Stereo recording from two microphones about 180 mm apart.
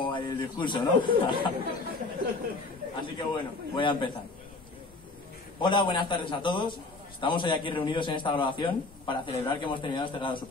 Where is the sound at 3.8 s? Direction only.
25° left (ahead or behind).